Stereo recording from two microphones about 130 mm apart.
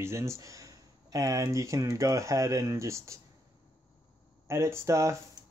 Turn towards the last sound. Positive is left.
turn(degrees=-20)  # may be behind; listen again after turning